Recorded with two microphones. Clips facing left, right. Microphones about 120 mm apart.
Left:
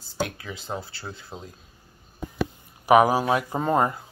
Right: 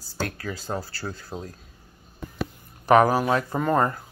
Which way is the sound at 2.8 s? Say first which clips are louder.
Even; 10° left (ahead or behind).